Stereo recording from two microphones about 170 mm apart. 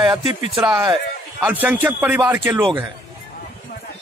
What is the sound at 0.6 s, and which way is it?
A man's voice, 5° right (ahead or behind).